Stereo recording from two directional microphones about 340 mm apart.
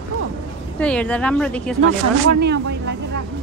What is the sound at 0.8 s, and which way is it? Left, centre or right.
Speech, centre.